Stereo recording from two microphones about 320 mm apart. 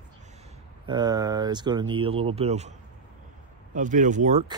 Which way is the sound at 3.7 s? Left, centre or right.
Right.